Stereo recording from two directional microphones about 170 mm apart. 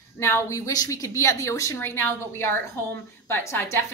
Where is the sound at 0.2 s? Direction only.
15° left (ahead or behind).